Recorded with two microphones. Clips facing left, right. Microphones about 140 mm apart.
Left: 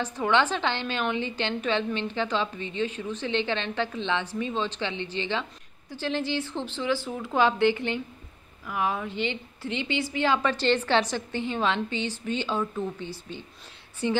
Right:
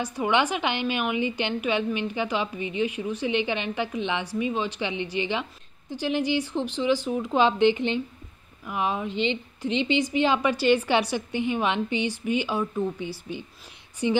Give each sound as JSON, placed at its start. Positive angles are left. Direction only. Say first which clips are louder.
{"t": 0.0, "sound": "a woman's voice", "louder": "even", "side_deg": -10}